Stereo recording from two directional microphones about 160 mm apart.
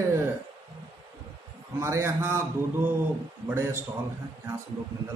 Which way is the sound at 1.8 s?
15° right (ahead or behind).